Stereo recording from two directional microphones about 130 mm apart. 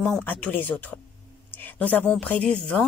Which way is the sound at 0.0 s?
10° left (ahead or behind).